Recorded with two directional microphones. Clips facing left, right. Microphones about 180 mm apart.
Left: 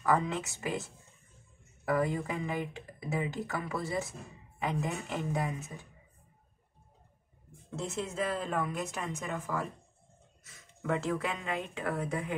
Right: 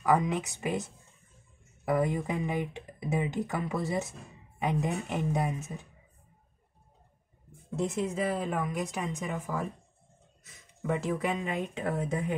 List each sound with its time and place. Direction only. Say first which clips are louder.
0.0 s a woman's voice: right 3 dB; 15° right (ahead or behind)
1.9 s speech: right 2 dB; 20° right (ahead or behind)
7.8 s a woman's voice: right 4 dB; 15° right (ahead or behind)